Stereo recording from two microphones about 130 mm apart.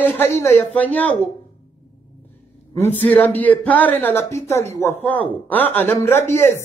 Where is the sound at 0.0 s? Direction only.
20° left (ahead or behind).